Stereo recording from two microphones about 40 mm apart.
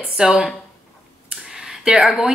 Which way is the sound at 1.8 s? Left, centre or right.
Centre.